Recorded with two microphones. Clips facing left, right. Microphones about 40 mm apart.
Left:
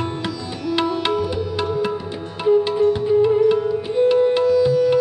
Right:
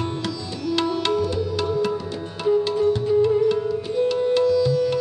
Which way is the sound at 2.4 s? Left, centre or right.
Centre.